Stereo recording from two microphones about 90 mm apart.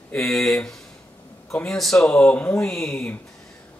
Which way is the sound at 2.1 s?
15° left (ahead or behind).